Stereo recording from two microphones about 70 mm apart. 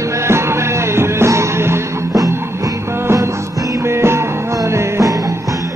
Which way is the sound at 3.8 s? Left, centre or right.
Right.